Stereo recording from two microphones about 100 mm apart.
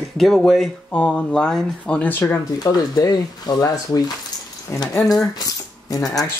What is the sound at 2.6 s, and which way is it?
Speech, 40° left (ahead or behind).